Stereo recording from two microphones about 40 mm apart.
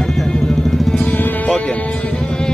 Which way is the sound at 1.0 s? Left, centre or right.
Left.